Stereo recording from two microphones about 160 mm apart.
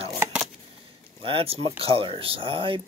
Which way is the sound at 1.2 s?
35° right (ahead or behind).